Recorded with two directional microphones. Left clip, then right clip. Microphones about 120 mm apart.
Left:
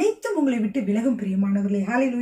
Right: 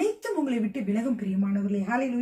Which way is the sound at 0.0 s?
15° left (ahead or behind).